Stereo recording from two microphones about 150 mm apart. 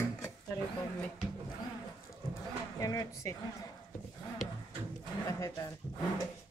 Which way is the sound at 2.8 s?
25° left (ahead or behind).